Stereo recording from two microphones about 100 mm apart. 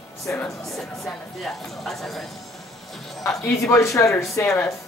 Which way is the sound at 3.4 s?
30° left (ahead or behind).